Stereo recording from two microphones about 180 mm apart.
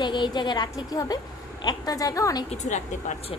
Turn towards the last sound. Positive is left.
turn(degrees=40)  # may be behind; listen again after turning